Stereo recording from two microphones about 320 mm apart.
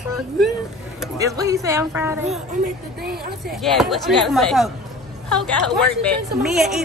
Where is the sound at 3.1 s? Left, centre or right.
Right.